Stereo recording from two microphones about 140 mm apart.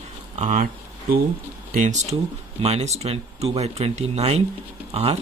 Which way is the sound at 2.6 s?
50° right (ahead or behind).